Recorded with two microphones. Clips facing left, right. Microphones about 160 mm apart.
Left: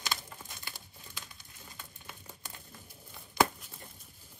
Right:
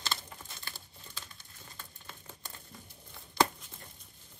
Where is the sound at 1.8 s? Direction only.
10° left (ahead or behind).